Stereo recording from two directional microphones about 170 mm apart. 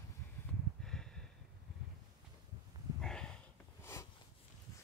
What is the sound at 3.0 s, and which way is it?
Snort, 5° left (ahead or behind).